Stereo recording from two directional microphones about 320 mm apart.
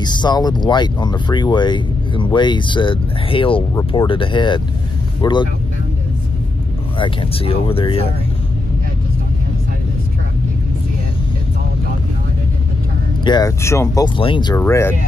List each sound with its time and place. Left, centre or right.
0.0 s speech: centre
7.0 s speech: centre
13.2 s speech: centre